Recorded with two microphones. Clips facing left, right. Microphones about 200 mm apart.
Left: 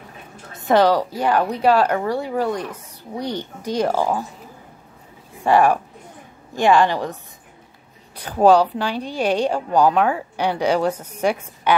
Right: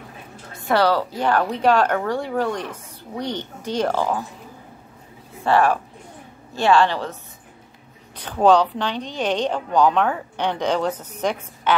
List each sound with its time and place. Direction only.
0.6 s a woman's voice: 20° left (ahead or behind)
5.4 s a woman's voice: 15° left (ahead or behind)
8.2 s a woman's voice: 10° left (ahead or behind)